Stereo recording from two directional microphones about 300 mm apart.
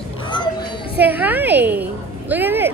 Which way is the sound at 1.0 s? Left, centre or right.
Centre.